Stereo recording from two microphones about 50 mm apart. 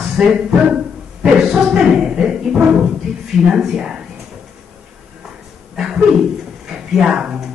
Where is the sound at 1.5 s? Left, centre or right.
Centre.